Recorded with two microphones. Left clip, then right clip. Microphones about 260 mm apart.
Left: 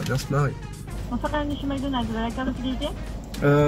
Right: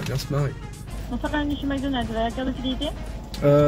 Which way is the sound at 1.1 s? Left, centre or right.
Left.